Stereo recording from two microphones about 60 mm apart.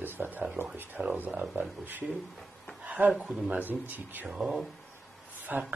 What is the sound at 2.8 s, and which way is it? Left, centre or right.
Speech, right.